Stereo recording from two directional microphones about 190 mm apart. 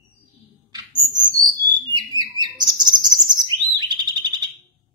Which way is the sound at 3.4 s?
20° right (ahead or behind).